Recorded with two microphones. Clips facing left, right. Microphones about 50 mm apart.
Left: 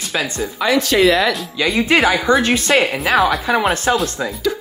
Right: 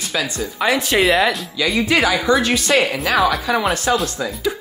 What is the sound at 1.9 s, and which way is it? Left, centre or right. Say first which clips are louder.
A woman's voice: left 2 dB; left.